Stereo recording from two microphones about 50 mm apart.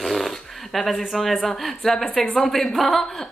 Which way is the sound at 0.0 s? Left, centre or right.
Centre.